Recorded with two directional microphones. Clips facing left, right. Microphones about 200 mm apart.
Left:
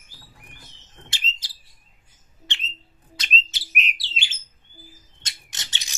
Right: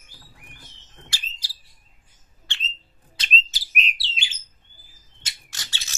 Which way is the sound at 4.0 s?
20° right (ahead or behind).